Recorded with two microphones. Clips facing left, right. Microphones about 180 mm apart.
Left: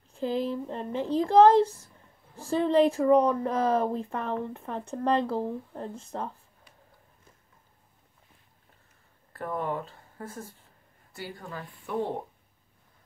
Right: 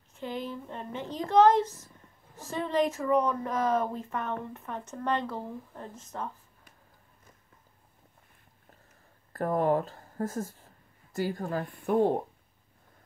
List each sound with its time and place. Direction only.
0.1 s a woman's voice: 30° left (ahead or behind)
9.3 s speech: 40° right (ahead or behind)